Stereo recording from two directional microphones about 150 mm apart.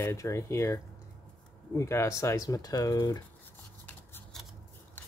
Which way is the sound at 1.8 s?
20° left (ahead or behind).